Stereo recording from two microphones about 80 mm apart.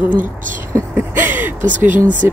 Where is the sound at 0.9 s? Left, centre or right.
Right.